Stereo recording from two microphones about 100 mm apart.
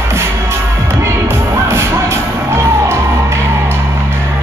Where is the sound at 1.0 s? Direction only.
25° right (ahead or behind).